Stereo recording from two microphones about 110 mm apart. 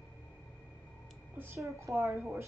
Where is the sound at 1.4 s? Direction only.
25° right (ahead or behind).